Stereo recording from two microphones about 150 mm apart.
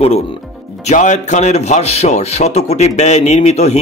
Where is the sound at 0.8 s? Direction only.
55° left (ahead or behind).